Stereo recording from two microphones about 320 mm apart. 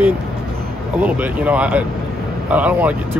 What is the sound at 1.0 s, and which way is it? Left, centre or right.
Speech, centre.